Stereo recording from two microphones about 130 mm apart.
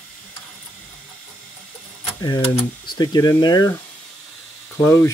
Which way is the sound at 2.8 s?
30° left (ahead or behind).